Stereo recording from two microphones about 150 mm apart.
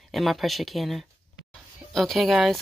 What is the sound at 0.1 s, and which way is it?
Speech, centre (ahead or behind).